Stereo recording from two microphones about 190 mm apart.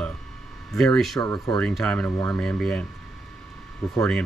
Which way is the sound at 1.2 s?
20° left (ahead or behind).